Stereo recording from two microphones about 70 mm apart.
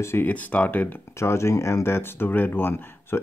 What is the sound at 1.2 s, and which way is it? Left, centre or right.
Speech, left.